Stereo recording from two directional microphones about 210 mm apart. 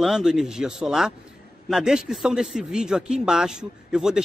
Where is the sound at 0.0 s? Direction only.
5° right (ahead or behind).